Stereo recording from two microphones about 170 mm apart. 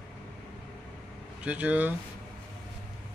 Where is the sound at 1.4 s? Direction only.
10° right (ahead or behind).